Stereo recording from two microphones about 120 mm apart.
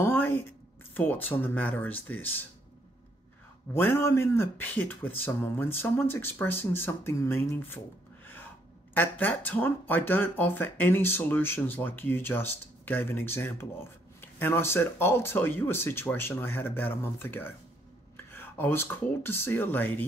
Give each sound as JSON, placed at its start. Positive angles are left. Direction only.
{"t": 0.0, "sound": "a sound", "side_deg": 20}
{"t": 0.9, "sound": "speech", "side_deg": 15}
{"t": 3.7, "sound": "speech", "side_deg": 20}
{"t": 8.9, "sound": "speech", "side_deg": 15}